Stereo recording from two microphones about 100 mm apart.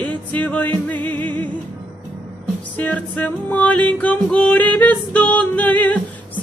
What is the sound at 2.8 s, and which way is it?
Music, 15° left (ahead or behind).